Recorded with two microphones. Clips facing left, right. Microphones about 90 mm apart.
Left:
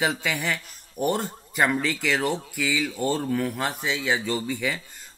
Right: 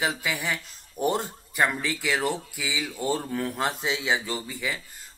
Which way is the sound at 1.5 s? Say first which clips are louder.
Left 2 dB; centre (ahead or behind).